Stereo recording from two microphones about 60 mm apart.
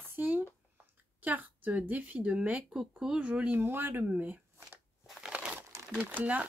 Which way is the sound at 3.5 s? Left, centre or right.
Right.